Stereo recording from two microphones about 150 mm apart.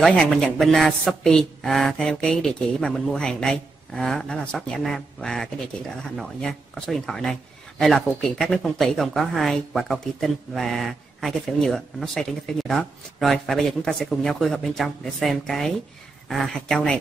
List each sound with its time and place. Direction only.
0.0 s speech: centre (ahead or behind)